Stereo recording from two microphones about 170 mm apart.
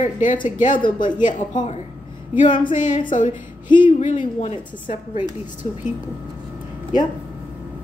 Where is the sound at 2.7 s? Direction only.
50° left (ahead or behind).